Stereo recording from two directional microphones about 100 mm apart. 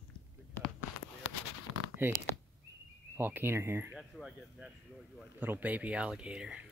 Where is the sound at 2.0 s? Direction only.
20° right (ahead or behind).